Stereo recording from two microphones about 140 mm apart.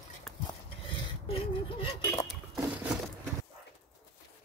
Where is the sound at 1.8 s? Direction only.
40° left (ahead or behind).